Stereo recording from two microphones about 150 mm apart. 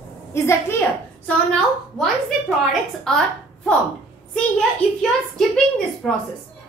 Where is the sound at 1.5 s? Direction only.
5° left (ahead or behind).